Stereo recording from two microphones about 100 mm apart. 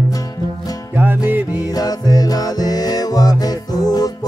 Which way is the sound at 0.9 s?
20° right (ahead or behind).